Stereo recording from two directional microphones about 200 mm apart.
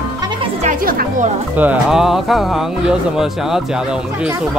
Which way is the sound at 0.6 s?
45° right (ahead or behind).